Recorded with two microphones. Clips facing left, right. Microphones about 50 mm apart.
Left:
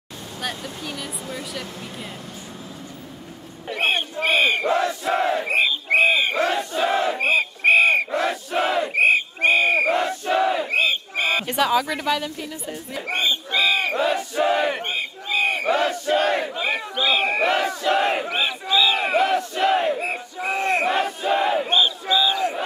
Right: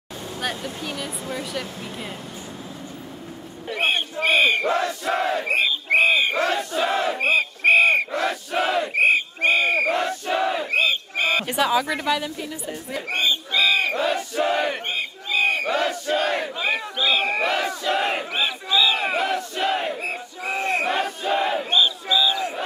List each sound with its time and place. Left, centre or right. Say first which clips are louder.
0.4 s speech: right 1 dB; centre
3.6 s speech: left 1 dB; centre
4.8 s battle cry: left 2 dB; centre
6.3 s battle cry: left 1 dB; centre
6.6 s speech: left 1 dB; centre
6.9 s battle cry: left 1 dB; centre
10.7 s battle cry: even; centre
11.4 s speech: left 1 dB; centre
13.1 s battle cry: even; left; by 16.8 s centre
16.9 s battle cry: left 3 dB; centre
21.6 s battle cry: left 1 dB; left